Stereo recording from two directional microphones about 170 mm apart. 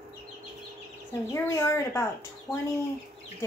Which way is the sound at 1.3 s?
15° left (ahead or behind).